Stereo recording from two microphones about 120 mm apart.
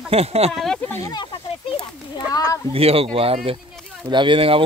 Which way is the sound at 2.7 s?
55° right (ahead or behind).